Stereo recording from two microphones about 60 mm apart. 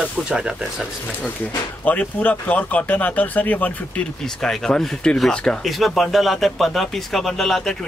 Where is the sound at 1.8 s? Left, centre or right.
Left.